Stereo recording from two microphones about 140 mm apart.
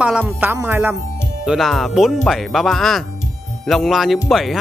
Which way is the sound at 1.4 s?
5° right (ahead or behind).